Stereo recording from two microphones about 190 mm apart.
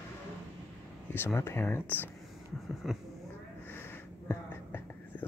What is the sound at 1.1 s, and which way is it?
Speech, 10° left (ahead or behind).